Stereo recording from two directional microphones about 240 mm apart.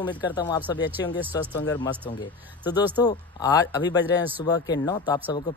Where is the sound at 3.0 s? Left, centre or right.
Centre.